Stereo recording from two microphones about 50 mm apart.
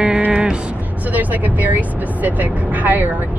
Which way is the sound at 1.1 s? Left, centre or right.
Right.